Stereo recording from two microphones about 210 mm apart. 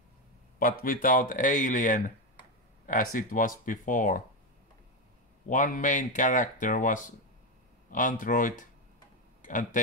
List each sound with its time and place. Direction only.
0.6 s speech: 45° left (ahead or behind)
5.5 s speech: 40° left (ahead or behind)